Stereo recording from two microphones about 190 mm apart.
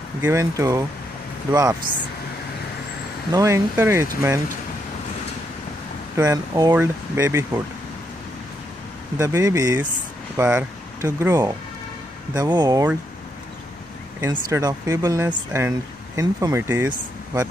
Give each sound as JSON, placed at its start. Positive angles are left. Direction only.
{"t": 0.2, "sound": "speech", "side_deg": -15}
{"t": 3.3, "sound": "speech", "side_deg": -15}
{"t": 6.1, "sound": "speech", "side_deg": -15}
{"t": 9.2, "sound": "speech", "side_deg": -15}
{"t": 14.5, "sound": "speech", "side_deg": -20}